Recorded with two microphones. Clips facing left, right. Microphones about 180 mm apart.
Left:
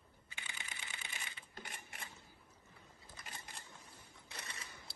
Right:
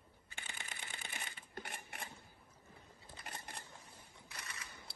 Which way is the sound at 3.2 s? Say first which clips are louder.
Right 4 dB; 60° right (ahead or behind).